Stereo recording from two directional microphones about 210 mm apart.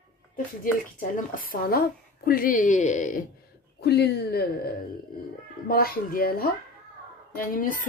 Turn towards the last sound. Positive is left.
turn(degrees=40)  # may be behind; listen again after turning